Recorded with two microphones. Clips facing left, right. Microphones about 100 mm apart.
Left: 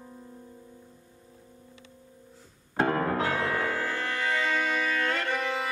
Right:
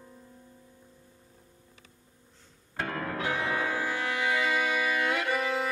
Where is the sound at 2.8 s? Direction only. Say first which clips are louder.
Left 7 dB; 35° left (ahead or behind).